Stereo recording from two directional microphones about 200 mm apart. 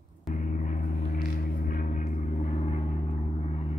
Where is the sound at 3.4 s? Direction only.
35° left (ahead or behind).